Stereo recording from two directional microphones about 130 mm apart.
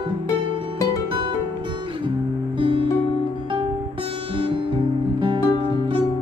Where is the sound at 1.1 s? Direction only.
40° right (ahead or behind).